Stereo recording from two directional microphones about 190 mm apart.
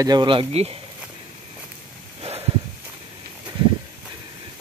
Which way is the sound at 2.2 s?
25° right (ahead or behind).